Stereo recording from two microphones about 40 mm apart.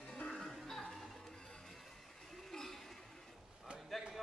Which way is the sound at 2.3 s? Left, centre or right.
Centre.